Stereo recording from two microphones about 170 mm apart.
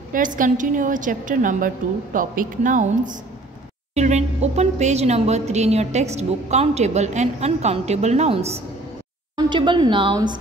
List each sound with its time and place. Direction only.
0.1 s a woman's voice: 50° right (ahead or behind)
9.4 s speech: 25° right (ahead or behind)